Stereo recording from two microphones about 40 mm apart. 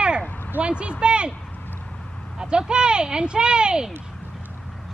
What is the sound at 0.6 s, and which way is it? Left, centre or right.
Speech, right.